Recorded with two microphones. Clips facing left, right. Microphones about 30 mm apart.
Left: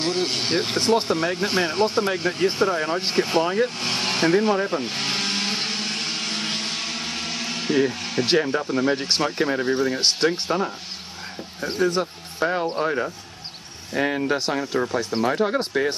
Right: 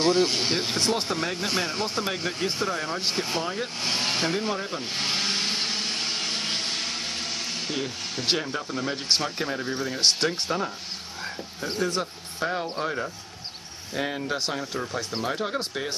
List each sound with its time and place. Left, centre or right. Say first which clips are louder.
0.0 s speech: right 2 dB; centre; by 14.3 s left
14.9 s speech: left 6 dB; centre